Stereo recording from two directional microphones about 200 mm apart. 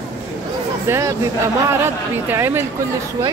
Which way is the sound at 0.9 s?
15° right (ahead or behind).